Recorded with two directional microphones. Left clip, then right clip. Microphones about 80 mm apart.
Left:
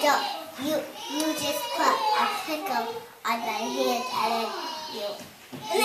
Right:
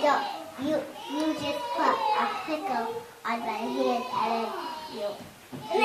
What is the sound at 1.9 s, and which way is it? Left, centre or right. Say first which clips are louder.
Children playing: left 3 dB; left.